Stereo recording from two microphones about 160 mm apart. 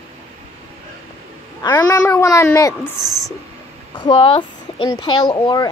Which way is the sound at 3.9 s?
30° left (ahead or behind).